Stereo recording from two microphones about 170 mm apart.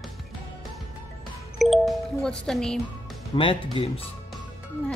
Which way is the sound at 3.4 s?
30° left (ahead or behind).